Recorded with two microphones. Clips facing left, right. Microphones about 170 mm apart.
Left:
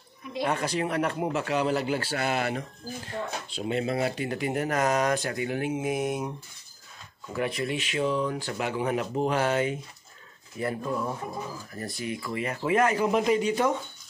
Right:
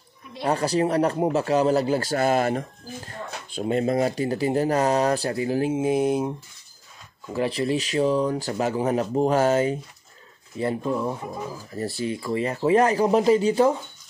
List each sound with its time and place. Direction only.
0.4 s speech: 35° right (ahead or behind)
7.3 s speech: 30° right (ahead or behind)
10.6 s speech: 25° right (ahead or behind)